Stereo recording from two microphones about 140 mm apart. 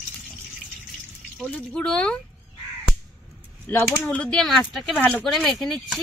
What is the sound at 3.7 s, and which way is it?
Speech, 15° left (ahead or behind).